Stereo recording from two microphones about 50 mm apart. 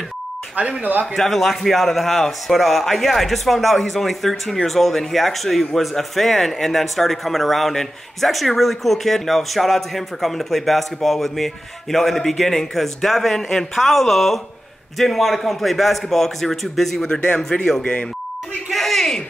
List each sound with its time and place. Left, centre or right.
0.6 s speech: right
1.1 s a man's voice: centre
17.1 s speech: centre
18.7 s a sound: centre